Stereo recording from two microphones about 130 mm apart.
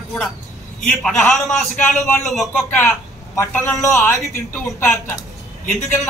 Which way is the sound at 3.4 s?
20° left (ahead or behind).